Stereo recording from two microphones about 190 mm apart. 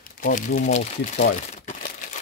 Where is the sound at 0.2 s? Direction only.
45° left (ahead or behind).